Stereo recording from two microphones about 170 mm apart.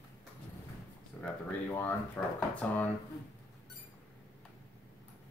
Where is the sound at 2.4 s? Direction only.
10° left (ahead or behind).